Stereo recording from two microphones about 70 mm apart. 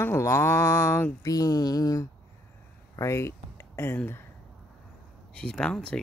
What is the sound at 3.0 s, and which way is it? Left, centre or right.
Speech, left.